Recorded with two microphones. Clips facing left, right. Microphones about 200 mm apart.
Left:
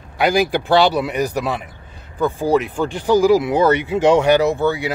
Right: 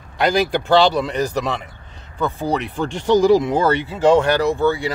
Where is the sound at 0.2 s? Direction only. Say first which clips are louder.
Left 1 dB; 10° left (ahead or behind).